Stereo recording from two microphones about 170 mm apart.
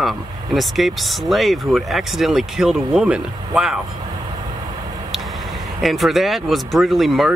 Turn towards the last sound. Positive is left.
turn(degrees=0)  # may be behind; listen again after turning